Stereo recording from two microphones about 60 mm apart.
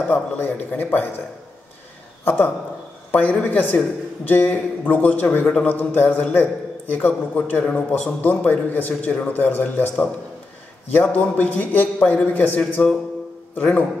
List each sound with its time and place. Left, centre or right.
0.1 s a man's voice: left
2.2 s a man's voice: left